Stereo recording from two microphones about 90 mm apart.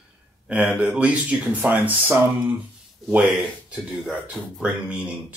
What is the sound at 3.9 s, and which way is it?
Speech, 10° right (ahead or behind).